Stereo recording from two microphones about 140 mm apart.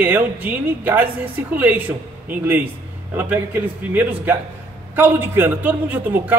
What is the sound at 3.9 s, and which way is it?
A woman's voice, 15° right (ahead or behind).